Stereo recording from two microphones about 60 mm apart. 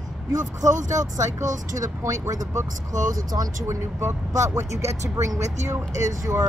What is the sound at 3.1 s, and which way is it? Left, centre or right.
Speech, right.